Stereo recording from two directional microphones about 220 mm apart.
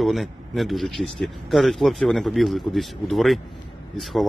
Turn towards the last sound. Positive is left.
turn(degrees=0)  # may be behind; listen again after turning